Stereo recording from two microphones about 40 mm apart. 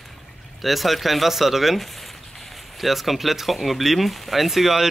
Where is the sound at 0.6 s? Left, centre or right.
Centre.